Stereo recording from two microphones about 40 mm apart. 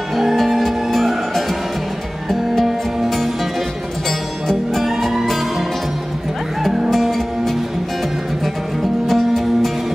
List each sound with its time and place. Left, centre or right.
0.1 s music: centre
4.8 s music: centre
6.9 s music: centre
9.0 s music: centre